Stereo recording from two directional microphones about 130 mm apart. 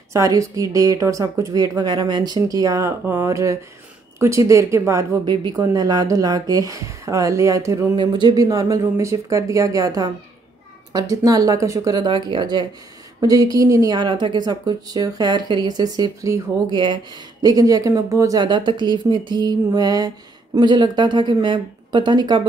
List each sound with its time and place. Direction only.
0.1 s speech: 25° right (ahead or behind)
5.2 s speech: 35° right (ahead or behind)
7.9 s speech: 35° right (ahead or behind)